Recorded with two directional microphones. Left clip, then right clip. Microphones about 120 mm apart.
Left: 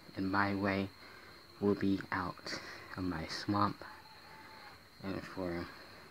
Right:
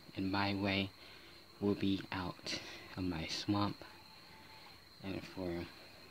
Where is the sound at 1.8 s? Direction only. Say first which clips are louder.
Left 3 dB; 15° right (ahead or behind).